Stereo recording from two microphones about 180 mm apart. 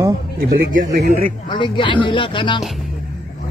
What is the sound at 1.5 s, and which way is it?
Speech, 25° left (ahead or behind).